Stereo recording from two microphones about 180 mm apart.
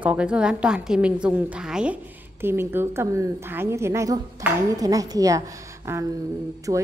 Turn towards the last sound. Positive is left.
turn(degrees=-20)  # may be behind; listen again after turning